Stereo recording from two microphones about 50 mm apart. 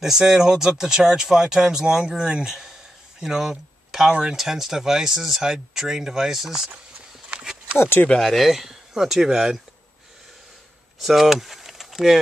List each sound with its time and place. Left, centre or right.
0.0 s speech: centre
4.1 s speech: centre
4.4 s speech: centre
7.3 s a sound: centre
8.2 s speech: centre
11.0 s speech: centre